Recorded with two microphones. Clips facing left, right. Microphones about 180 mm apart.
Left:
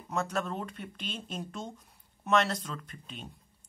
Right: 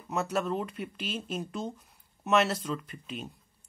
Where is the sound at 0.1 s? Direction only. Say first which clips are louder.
Right 3 dB; 5° right (ahead or behind).